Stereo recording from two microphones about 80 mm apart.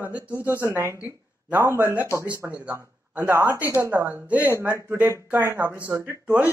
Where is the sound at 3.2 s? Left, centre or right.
Right.